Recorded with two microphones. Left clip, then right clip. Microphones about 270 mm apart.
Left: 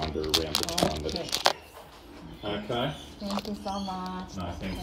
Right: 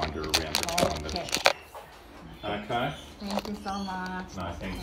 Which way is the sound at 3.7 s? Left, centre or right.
Centre.